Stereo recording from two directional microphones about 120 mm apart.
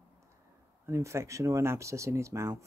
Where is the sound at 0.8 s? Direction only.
25° right (ahead or behind).